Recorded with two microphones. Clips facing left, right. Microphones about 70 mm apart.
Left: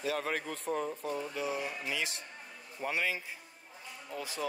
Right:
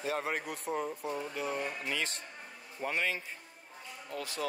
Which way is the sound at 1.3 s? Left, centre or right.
Centre.